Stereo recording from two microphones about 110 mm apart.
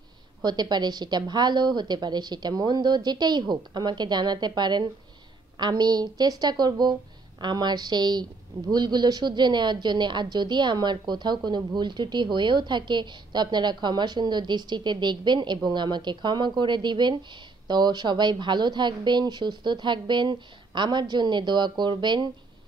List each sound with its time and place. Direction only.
0.4 s a woman's voice: 40° right (ahead or behind)